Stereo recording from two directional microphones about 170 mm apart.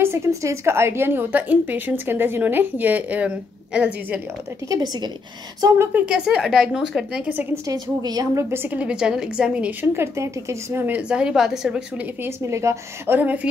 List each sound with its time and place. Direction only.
0.0 s a woman's voice: 15° right (ahead or behind)
4.6 s a woman's voice: 25° right (ahead or behind); by 12.3 s 5° right (ahead or behind)
12.4 s a woman's voice: 15° right (ahead or behind)